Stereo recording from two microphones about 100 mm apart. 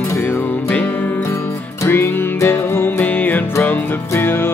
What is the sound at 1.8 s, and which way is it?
Music, 25° left (ahead or behind).